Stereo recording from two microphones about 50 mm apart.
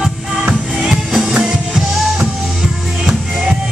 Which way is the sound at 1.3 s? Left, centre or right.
Centre.